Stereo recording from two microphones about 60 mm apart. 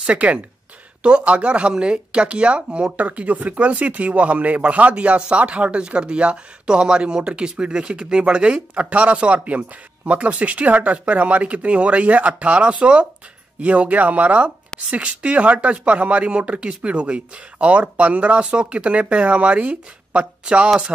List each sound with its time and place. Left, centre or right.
0.0 s speech: right